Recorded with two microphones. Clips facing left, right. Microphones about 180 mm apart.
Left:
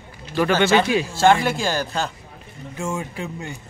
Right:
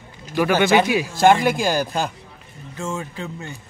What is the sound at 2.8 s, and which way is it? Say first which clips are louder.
Speech: left 1 dB; 15° left (ahead or behind).